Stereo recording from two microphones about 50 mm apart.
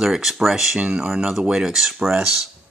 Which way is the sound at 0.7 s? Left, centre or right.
Right.